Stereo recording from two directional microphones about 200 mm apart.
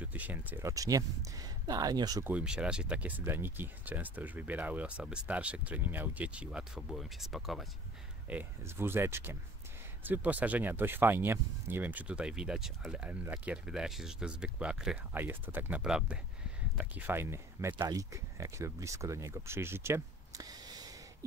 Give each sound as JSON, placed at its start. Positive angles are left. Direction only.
{"t": 0.0, "sound": "speech", "side_deg": -10}
{"t": 2.3, "sound": "speech", "side_deg": -5}